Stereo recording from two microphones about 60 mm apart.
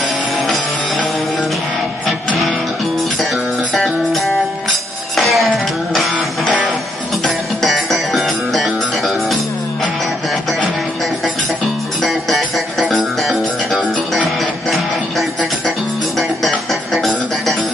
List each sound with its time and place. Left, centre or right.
3.7 s music: centre
7.2 s music: centre
12.0 s music: centre